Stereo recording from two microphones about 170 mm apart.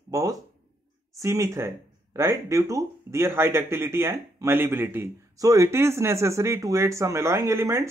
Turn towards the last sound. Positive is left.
turn(degrees=-15)  # may be behind; listen again after turning